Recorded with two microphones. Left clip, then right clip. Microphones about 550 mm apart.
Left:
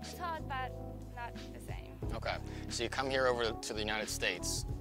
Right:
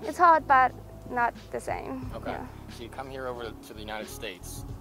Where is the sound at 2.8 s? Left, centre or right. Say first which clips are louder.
Left 5 dB; left.